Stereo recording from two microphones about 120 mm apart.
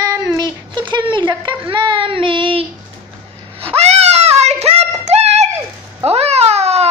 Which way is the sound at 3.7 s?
65° right (ahead or behind).